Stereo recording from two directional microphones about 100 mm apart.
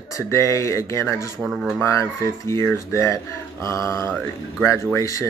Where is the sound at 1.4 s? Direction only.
5° left (ahead or behind).